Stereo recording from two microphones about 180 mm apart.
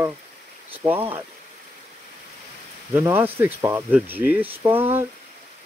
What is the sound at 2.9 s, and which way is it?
Speech, 15° right (ahead or behind).